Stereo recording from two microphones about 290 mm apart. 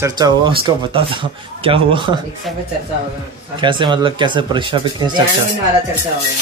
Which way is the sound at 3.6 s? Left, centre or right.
Centre.